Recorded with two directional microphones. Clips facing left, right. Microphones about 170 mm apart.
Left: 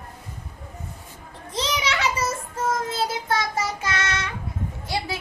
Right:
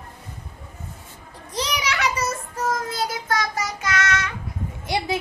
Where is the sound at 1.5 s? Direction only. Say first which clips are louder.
Even; 25° left (ahead or behind).